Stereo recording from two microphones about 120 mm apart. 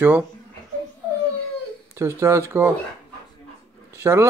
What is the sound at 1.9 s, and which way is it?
Speech, 25° right (ahead or behind).